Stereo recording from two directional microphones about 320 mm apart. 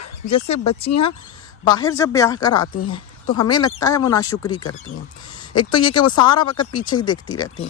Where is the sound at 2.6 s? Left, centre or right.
Left.